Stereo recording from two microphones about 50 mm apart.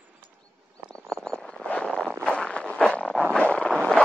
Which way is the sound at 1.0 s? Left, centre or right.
Centre.